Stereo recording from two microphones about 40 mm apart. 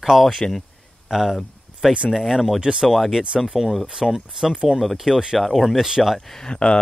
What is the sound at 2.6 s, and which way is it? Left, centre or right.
Speech, centre.